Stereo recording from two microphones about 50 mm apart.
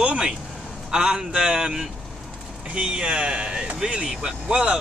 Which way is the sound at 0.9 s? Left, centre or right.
Centre.